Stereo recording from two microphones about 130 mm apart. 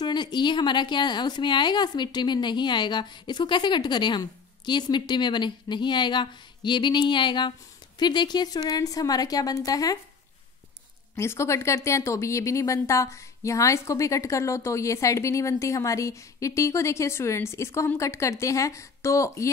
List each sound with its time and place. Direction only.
0.0 s a woman's voice: 35° left (ahead or behind)
11.1 s speech: 20° left (ahead or behind)